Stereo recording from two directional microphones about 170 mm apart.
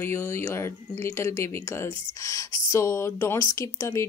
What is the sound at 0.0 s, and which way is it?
A woman's voice, 15° left (ahead or behind).